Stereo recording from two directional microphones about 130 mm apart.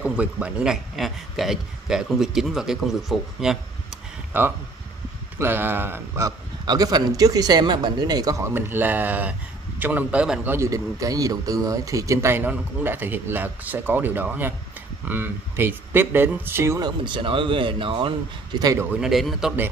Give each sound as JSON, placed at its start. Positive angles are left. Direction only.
{"t": 0.0, "sound": "speech", "side_deg": -10}
{"t": 4.3, "sound": "a man's voice", "side_deg": -15}
{"t": 8.5, "sound": "a man's voice", "side_deg": -15}
{"t": 10.5, "sound": "a man's voice", "side_deg": -25}
{"t": 16.8, "sound": "a man's voice", "side_deg": -35}
{"t": 18.8, "sound": "speech", "side_deg": -10}